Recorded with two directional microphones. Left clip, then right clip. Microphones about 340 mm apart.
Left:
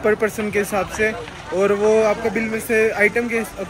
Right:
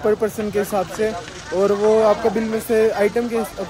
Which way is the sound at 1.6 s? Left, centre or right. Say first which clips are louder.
Even; centre.